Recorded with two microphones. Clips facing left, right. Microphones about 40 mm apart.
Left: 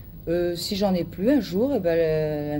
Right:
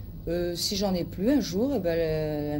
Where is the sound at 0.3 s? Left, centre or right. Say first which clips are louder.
Left 5 dB; centre.